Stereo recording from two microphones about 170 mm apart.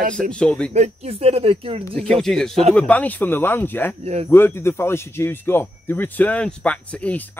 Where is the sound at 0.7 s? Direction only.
40° right (ahead or behind).